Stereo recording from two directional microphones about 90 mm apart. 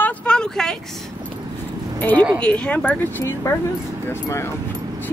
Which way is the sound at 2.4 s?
15° left (ahead or behind).